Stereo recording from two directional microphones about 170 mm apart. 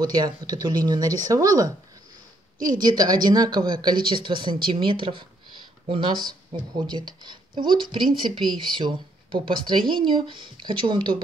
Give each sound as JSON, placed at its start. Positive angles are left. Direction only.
{"t": 0.0, "sound": "speech", "side_deg": -25}